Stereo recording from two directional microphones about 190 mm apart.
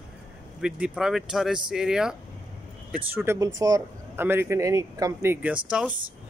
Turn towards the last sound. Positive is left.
turn(degrees=-5)  # may be behind; listen again after turning